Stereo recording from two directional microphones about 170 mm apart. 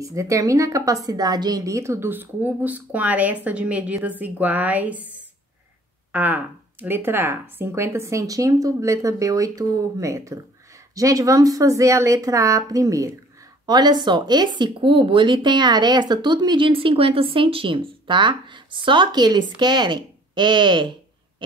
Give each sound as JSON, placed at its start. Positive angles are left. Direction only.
{"t": 0.0, "sound": "a woman's voice", "side_deg": -20}
{"t": 6.1, "sound": "a woman's voice", "side_deg": -10}